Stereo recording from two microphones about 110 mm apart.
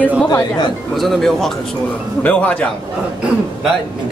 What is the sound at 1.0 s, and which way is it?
Speech, centre (ahead or behind).